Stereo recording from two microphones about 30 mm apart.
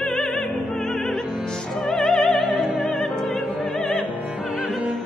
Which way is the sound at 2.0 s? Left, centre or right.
Centre.